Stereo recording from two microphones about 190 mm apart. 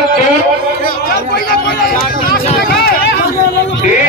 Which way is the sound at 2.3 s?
55° left (ahead or behind).